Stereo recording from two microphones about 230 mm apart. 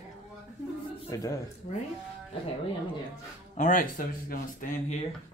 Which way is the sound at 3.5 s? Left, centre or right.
Left.